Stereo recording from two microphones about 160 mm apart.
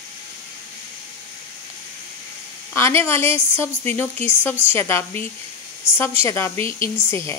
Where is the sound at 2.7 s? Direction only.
15° left (ahead or behind).